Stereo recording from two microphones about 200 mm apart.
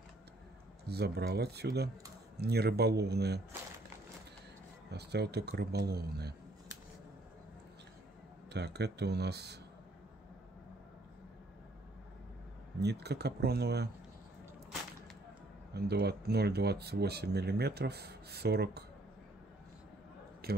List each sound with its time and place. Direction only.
0.8 s speech: 55° right (ahead or behind)
4.9 s speech: 55° right (ahead or behind)
8.5 s speech: 55° right (ahead or behind)
12.8 s speech: 55° right (ahead or behind)
15.7 s speech: 55° right (ahead or behind)
20.4 s a sound: 50° right (ahead or behind)